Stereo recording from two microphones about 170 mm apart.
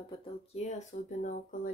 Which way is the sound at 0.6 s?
45° left (ahead or behind).